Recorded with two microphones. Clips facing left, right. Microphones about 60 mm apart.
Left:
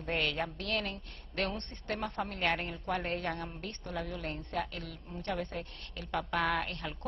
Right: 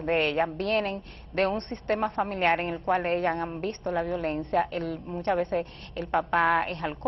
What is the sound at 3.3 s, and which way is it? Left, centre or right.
Speech, right.